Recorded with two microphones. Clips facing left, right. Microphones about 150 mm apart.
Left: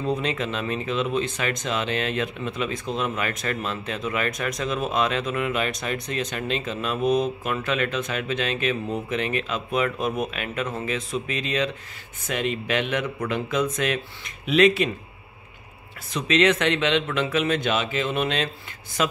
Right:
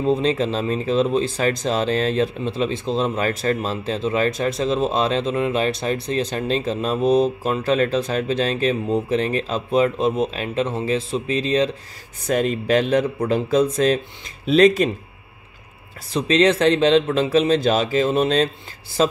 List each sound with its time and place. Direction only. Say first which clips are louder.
0.0 s speech: right 7 dB; 30° right (ahead or behind)
16.1 s speech: right 4 dB; 35° right (ahead or behind)